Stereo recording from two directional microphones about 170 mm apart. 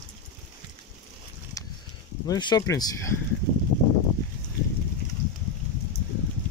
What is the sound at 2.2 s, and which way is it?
Speech, 25° left (ahead or behind).